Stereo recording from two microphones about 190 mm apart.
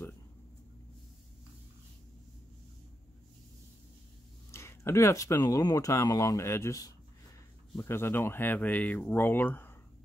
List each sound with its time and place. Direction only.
4.5 s speech: 15° left (ahead or behind)